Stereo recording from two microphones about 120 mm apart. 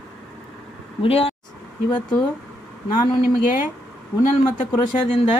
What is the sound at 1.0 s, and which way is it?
Speech, 55° left (ahead or behind).